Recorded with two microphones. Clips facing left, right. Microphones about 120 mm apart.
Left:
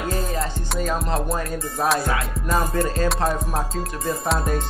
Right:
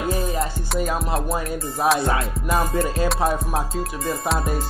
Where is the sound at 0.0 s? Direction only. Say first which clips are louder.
Right 2 dB; 10° right (ahead or behind).